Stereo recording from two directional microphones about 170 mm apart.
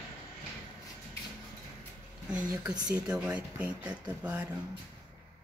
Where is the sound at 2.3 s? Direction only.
5° right (ahead or behind).